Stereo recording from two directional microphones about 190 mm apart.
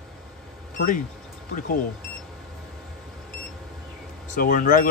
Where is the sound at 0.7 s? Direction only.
45° left (ahead or behind).